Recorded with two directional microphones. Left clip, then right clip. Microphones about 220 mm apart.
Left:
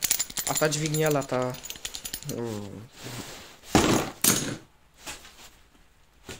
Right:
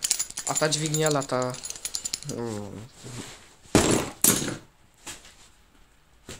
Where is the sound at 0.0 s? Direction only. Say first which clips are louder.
Even; 40° left (ahead or behind).